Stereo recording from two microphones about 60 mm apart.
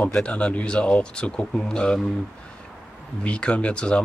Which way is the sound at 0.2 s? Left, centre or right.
Centre.